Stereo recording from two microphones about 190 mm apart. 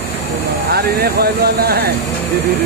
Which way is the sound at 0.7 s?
55° right (ahead or behind).